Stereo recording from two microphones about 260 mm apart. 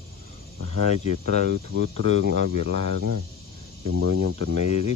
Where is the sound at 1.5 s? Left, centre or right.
Right.